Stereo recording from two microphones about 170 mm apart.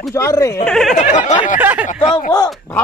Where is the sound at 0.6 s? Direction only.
Centre (ahead or behind).